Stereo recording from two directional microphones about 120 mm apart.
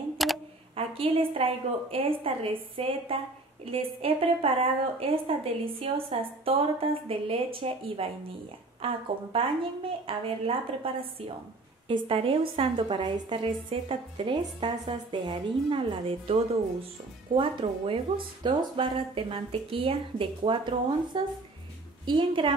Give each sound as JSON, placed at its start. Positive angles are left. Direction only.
{"t": 0.2, "sound": "camera", "side_deg": 0}
{"t": 0.7, "sound": "a woman's voice", "side_deg": -50}